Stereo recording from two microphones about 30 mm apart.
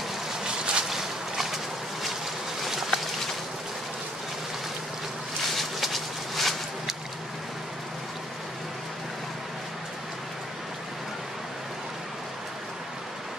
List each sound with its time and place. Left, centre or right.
0.3 s boat: right
0.8 s boat: centre
2.6 s stream: centre
5.6 s a sound: centre